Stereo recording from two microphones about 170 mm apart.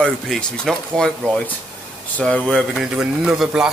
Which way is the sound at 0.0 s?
5° left (ahead or behind).